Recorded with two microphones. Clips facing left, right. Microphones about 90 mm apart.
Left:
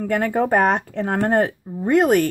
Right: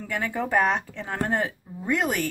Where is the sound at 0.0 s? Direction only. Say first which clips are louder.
Left 9 dB; 50° left (ahead or behind).